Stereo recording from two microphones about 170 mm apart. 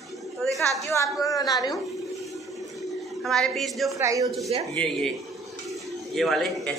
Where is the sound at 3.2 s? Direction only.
Centre (ahead or behind).